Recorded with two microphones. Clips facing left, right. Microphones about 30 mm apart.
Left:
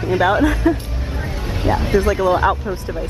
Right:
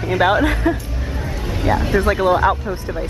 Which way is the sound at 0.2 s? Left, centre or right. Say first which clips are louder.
Right 1 dB; right.